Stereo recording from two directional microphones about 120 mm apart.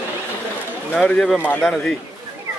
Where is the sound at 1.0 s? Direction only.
5° left (ahead or behind).